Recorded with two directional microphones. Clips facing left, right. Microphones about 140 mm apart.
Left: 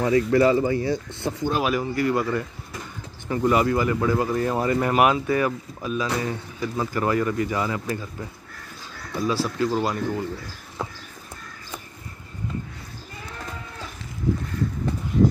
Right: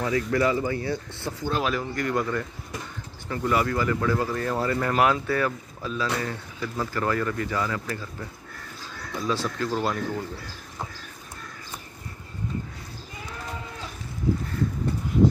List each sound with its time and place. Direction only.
0.0 s speech: 30° left (ahead or behind); by 2.4 s 5° left (ahead or behind)
3.3 s speech: 20° left (ahead or behind)
9.3 s speech: 10° left (ahead or behind)